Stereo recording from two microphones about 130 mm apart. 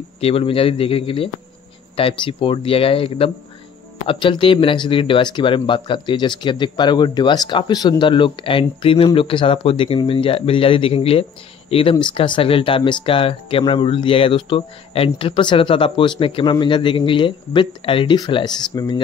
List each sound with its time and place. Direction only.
0.2 s speech: 45° left (ahead or behind)